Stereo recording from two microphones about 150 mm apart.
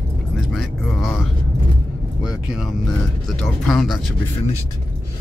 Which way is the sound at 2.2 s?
5° right (ahead or behind).